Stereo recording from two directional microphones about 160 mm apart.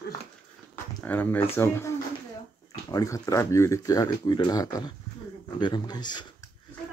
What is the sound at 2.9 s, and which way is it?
Speech, 20° left (ahead or behind).